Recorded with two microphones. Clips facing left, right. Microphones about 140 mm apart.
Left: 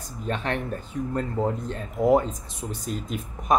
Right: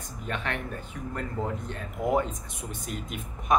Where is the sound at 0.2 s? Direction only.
35° left (ahead or behind).